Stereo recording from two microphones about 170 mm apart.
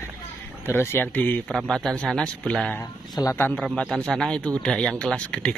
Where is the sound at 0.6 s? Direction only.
15° left (ahead or behind).